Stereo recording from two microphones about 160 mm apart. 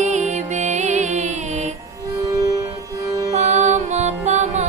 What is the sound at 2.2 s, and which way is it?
Music, 20° right (ahead or behind).